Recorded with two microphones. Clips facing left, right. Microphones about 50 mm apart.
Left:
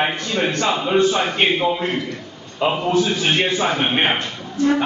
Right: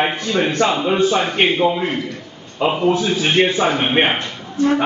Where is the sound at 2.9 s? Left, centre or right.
Centre.